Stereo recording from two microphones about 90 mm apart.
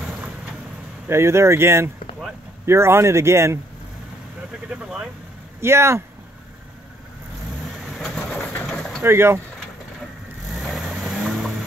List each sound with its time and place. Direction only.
1.0 s speech: 30° right (ahead or behind)
4.6 s speech: 10° right (ahead or behind)
5.6 s speech: 30° right (ahead or behind)
8.0 s bird: 5° left (ahead or behind)
9.0 s speech: 25° right (ahead or behind)
10.5 s vehicle: centre (ahead or behind)